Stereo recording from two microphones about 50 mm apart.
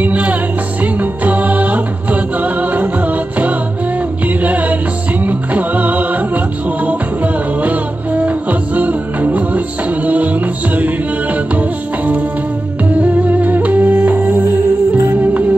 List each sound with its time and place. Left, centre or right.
0.0 s music: right